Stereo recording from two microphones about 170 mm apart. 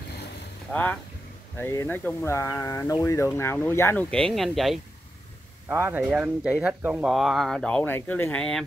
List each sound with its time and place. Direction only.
0.7 s speech: 5° left (ahead or behind)
5.7 s speech: 15° right (ahead or behind); by 8.6 s 5° left (ahead or behind)